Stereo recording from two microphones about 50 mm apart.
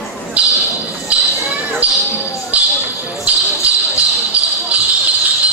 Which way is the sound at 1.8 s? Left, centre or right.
Right.